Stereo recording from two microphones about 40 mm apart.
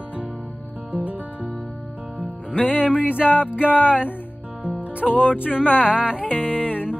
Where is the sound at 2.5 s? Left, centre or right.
Left.